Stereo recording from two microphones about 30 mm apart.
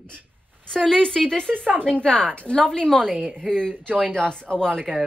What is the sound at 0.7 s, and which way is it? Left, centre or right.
Speech, left.